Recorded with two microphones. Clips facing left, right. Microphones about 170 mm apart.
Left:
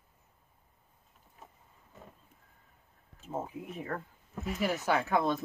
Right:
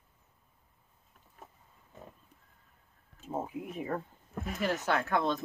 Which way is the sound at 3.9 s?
15° right (ahead or behind).